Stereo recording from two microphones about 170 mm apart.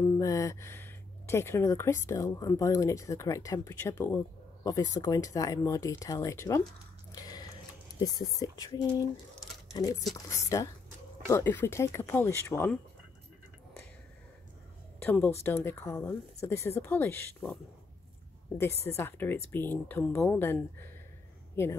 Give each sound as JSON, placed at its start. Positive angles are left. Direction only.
{"t": 0.2, "sound": "speech", "side_deg": 20}
{"t": 7.1, "sound": "a sound", "side_deg": 20}
{"t": 8.4, "sound": "speech", "side_deg": 20}
{"t": 15.0, "sound": "speech", "side_deg": 10}
{"t": 18.9, "sound": "speech", "side_deg": 15}